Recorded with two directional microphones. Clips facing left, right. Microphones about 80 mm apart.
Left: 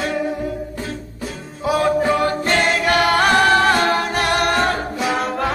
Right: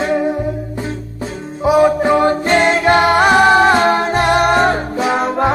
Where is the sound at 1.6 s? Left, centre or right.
Centre.